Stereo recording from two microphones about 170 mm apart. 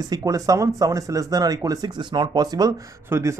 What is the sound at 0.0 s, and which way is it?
Speech, 20° right (ahead or behind).